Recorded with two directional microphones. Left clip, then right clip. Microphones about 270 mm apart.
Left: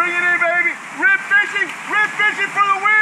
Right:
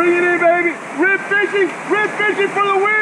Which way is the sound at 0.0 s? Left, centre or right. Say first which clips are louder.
Right 2 dB; centre.